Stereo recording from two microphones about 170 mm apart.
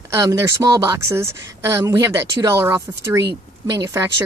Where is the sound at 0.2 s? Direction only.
20° right (ahead or behind).